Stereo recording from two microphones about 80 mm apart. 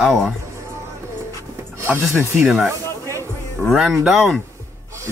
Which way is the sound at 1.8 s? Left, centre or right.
Right.